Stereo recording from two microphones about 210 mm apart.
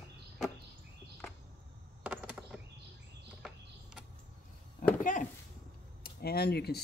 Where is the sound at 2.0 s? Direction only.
5° right (ahead or behind).